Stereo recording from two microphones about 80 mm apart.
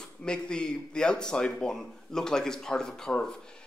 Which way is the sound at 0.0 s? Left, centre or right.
Centre.